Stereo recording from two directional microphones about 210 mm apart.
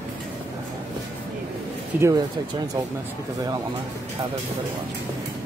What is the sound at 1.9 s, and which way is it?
Speech, 10° right (ahead or behind).